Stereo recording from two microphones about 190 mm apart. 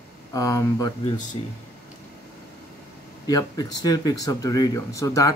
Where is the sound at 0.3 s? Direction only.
20° left (ahead or behind).